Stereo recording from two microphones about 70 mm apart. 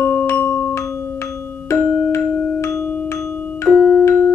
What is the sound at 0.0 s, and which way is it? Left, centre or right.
Music, left.